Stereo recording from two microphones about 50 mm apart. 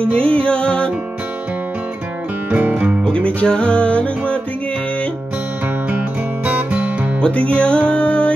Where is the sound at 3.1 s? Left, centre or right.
Left.